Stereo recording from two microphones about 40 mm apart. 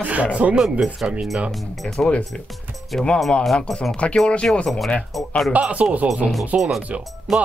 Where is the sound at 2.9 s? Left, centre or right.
Centre.